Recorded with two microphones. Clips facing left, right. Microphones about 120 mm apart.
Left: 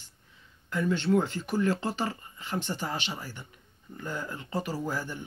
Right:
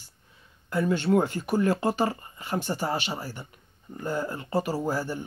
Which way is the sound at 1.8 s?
45° right (ahead or behind).